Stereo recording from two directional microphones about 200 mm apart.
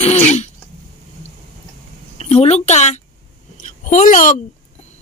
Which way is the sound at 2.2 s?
30° left (ahead or behind).